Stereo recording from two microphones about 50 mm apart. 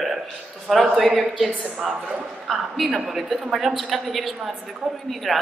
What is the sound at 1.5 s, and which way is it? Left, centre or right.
Speech, right.